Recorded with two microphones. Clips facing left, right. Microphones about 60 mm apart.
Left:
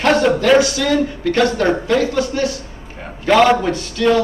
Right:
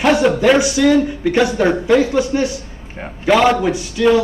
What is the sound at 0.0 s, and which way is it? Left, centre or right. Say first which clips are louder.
A man's voice: right 1 dB; centre.